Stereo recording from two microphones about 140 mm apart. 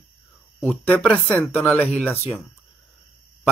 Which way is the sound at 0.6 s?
10° left (ahead or behind).